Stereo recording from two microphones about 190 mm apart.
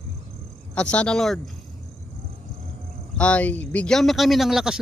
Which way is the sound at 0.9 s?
5° left (ahead or behind).